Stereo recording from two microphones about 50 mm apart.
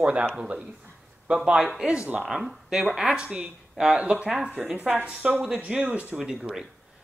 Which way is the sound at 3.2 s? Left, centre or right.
Right.